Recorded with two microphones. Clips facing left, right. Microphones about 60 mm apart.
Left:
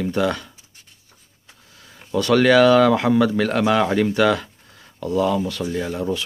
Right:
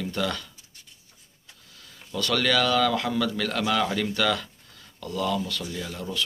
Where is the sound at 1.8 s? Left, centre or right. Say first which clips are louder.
Left 9 dB; left.